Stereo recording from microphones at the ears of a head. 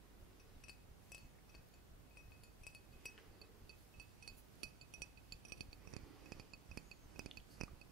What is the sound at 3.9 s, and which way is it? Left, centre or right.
Chink, right.